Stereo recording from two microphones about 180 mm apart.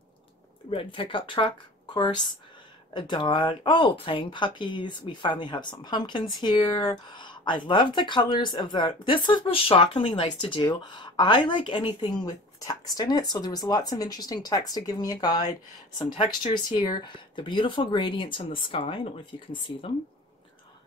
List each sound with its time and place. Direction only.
0.7 s speech: 30° left (ahead or behind)